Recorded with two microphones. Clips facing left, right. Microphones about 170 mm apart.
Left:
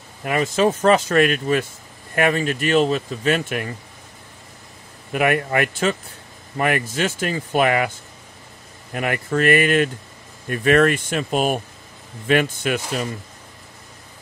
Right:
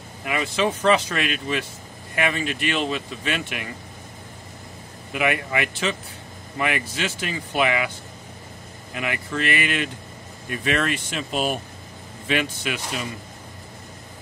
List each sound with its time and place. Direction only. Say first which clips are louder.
0.2 s speech: left 5 dB; 45° left (ahead or behind)
5.1 s speech: left 5 dB; 50° left (ahead or behind)
8.9 s speech: left 6 dB; 50° left (ahead or behind)